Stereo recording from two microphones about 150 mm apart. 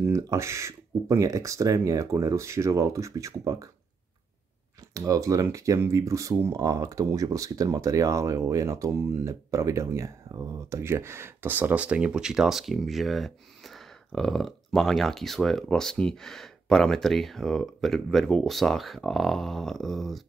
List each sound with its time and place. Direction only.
0.0 s speech: 20° right (ahead or behind)
4.9 s speech: 20° right (ahead or behind); by 20.2 s centre (ahead or behind)